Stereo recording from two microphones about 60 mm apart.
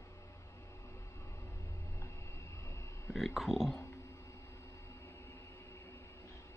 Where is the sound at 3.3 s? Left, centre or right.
Centre.